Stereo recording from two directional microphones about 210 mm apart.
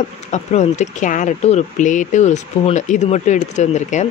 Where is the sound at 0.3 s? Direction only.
35° left (ahead or behind).